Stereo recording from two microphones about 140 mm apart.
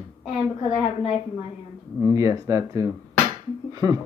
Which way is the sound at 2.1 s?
20° right (ahead or behind).